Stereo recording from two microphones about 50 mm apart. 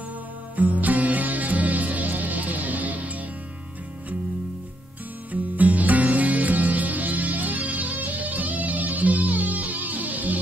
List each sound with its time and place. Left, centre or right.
0.6 s music: right
5.3 s music: right